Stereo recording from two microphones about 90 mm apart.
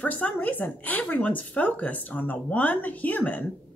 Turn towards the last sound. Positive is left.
turn(degrees=15)  # may be behind; listen again after turning